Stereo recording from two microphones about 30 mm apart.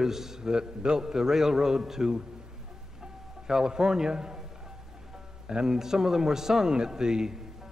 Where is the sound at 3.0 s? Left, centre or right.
Centre.